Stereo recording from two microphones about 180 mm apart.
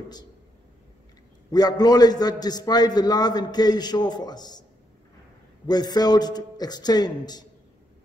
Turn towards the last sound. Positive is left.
turn(degrees=20)  # may be behind; listen again after turning